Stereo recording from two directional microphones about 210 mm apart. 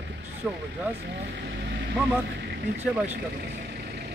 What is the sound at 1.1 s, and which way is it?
Speech, 50° right (ahead or behind).